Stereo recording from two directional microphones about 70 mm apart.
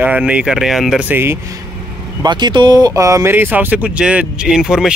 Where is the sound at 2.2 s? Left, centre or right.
Right.